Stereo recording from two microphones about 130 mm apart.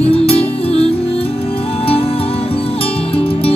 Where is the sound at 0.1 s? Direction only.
50° left (ahead or behind).